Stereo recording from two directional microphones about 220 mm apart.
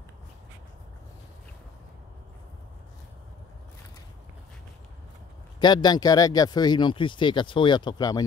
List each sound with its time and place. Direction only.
5.6 s speech: 20° left (ahead or behind)